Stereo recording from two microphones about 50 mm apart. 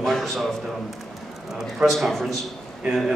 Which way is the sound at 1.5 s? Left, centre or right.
Centre.